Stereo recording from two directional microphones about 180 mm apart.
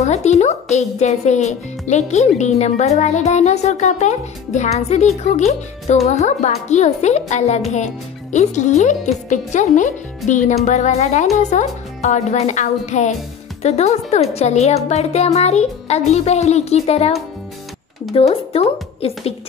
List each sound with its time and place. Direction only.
0.0 s speech: 40° left (ahead or behind)